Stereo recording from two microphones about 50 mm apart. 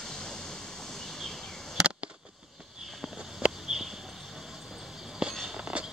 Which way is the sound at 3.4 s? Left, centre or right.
Centre.